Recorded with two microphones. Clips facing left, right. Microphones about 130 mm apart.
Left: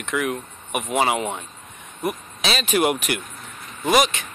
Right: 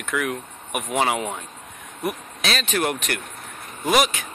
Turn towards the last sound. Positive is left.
turn(degrees=-5)  # may be behind; listen again after turning